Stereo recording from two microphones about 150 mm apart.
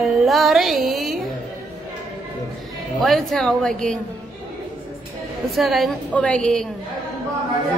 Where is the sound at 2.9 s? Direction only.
Centre (ahead or behind).